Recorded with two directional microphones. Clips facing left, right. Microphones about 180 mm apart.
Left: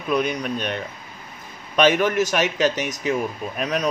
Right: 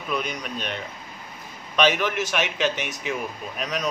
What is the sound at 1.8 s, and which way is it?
Speech, 45° left (ahead or behind).